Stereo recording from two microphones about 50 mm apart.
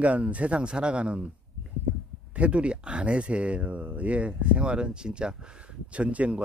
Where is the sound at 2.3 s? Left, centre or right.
Right.